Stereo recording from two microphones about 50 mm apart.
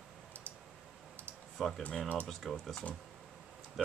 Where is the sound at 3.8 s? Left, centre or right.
Centre.